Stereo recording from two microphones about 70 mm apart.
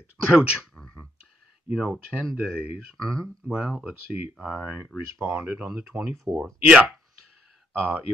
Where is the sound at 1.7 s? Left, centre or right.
Centre.